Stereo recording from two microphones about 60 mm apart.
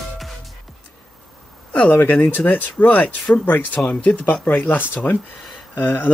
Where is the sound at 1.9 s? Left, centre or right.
Left.